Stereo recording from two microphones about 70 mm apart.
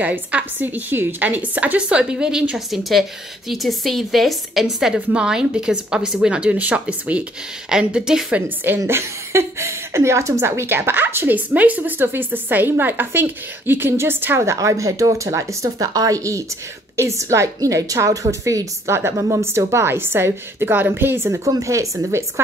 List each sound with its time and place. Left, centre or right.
0.0 s a woman's voice: right; by 6.3 s centre
6.3 s a woman's voice: centre
8.3 s speech: right
8.7 s a woman's voice: right
16.2 s a woman's voice: right
21.5 s a woman's voice: right